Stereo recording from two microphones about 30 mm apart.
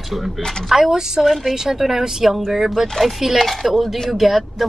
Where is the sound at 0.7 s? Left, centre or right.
Centre.